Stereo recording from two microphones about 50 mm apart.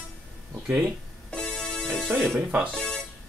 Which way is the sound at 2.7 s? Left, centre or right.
Centre.